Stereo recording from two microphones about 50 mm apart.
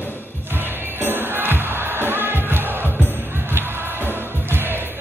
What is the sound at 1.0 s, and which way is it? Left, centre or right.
Music, right.